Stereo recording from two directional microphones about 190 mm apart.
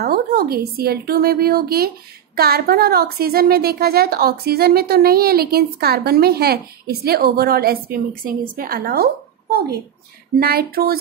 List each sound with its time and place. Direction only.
0.0 s a woman's voice: 55° right (ahead or behind)